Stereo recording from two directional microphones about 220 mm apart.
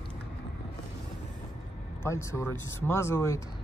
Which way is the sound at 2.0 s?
15° left (ahead or behind).